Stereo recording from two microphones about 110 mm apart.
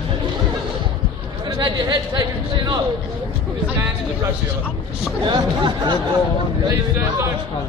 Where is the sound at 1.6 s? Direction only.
45° right (ahead or behind).